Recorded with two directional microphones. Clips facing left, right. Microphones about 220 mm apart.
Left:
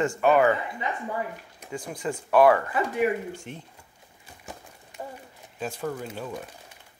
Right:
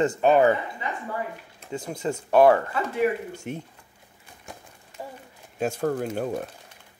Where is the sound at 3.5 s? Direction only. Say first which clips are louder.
Right 7 dB; 50° right (ahead or behind).